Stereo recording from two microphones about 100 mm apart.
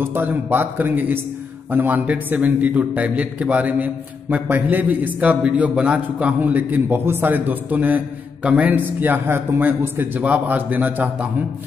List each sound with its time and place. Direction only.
0.0 s a man's voice: 20° right (ahead or behind)